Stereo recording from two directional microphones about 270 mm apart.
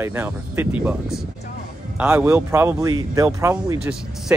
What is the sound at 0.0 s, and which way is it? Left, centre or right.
Speech, centre.